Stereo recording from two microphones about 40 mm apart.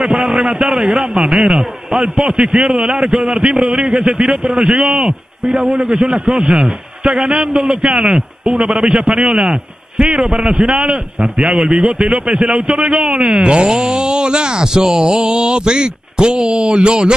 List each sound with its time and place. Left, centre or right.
0.0 s a man's voice: centre
5.4 s a man's voice: centre
13.7 s a man's voice: centre
15.4 s a man's voice: right